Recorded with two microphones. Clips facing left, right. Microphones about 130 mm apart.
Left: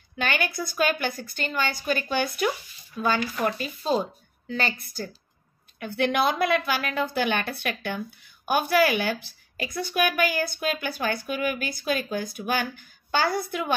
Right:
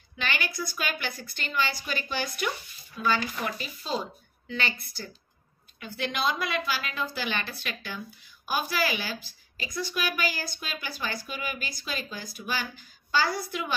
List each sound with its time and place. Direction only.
0.2 s a woman's voice: 50° left (ahead or behind)
5.8 s a woman's voice: 60° left (ahead or behind)